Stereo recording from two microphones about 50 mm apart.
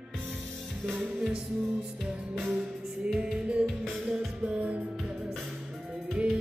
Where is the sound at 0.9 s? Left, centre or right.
Right.